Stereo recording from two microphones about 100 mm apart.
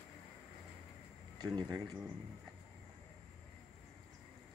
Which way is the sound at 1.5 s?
40° right (ahead or behind).